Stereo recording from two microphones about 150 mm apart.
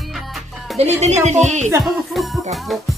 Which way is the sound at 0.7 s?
45° right (ahead or behind).